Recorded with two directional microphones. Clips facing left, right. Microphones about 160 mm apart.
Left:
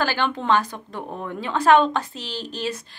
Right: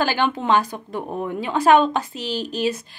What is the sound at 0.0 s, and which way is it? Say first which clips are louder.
Speech: right 2 dB; 15° right (ahead or behind).